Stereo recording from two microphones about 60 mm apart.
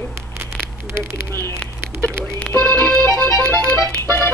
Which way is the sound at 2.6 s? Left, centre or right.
Left.